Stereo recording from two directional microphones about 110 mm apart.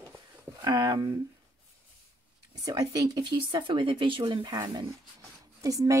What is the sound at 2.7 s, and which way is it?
Speech, 35° right (ahead or behind).